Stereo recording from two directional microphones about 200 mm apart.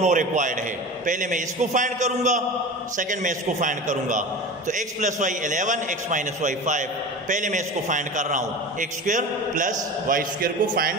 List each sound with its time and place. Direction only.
0.0 s a man's voice: 40° right (ahead or behind)